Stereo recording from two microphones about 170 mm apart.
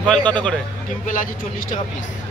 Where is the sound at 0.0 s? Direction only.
5° left (ahead or behind).